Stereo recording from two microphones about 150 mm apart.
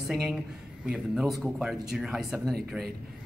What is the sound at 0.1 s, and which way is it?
Speech, centre (ahead or behind).